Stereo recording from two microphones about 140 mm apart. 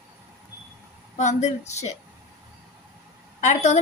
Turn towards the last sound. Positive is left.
turn(degrees=55)  # may be behind; listen again after turning